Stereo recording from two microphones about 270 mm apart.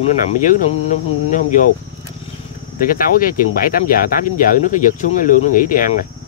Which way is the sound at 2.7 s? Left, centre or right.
Left.